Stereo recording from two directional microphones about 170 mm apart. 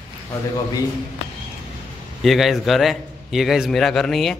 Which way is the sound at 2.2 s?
Centre (ahead or behind).